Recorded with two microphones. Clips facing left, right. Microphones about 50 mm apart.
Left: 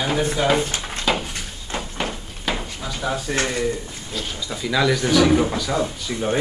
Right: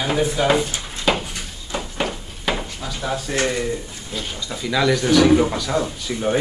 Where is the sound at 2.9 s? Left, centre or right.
Centre.